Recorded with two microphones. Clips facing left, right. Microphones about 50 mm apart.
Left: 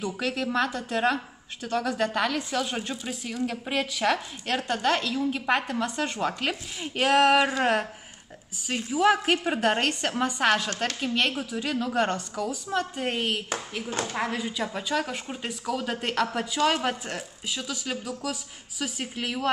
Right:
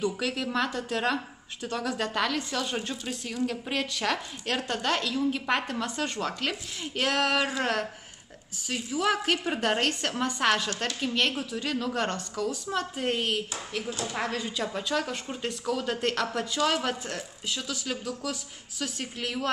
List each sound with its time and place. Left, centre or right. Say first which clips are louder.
0.0 s a woman's voice: even; centre
13.8 s speech: left 3 dB; left
14.1 s a woman's voice: even; centre